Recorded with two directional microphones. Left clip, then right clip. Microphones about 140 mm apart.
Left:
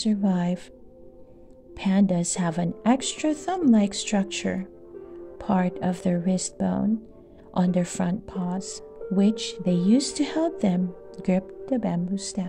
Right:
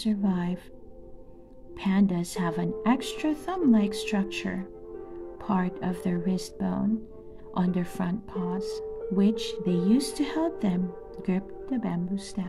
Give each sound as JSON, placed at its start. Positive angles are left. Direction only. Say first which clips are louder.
{"t": 0.0, "sound": "a woman's voice", "louder": "left 4 dB", "side_deg": 40}
{"t": 1.8, "sound": "speech", "louder": "left 3 dB", "side_deg": 40}